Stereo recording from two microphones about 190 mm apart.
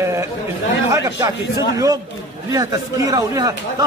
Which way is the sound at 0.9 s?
15° right (ahead or behind).